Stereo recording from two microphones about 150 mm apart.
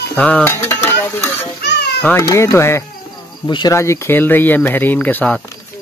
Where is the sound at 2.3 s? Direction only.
20° left (ahead or behind).